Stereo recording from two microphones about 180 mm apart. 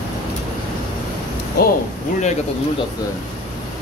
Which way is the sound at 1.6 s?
60° left (ahead or behind).